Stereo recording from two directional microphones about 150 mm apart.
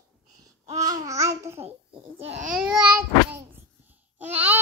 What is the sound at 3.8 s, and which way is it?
Babbling, 10° right (ahead or behind).